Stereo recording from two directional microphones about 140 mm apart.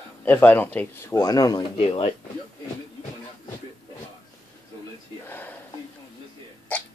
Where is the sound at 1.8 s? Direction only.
45° left (ahead or behind).